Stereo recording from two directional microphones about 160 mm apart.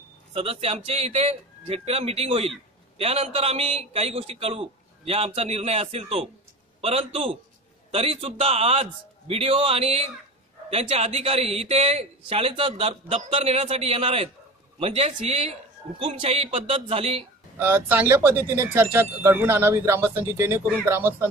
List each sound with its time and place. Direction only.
0.3 s speech: 35° right (ahead or behind)
17.6 s speech: 10° right (ahead or behind)